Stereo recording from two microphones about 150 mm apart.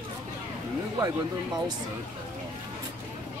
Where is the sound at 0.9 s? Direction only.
25° right (ahead or behind).